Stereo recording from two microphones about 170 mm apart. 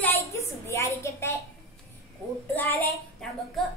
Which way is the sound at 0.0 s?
15° left (ahead or behind).